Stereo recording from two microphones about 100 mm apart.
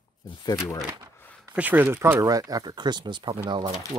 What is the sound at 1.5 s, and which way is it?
Speech, 15° right (ahead or behind).